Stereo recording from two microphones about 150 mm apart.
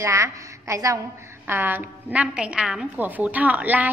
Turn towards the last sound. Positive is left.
turn(degrees=-10)  # may be behind; listen again after turning